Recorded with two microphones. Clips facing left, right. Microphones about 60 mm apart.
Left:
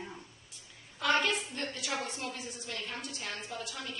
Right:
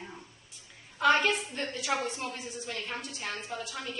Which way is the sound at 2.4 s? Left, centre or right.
Centre.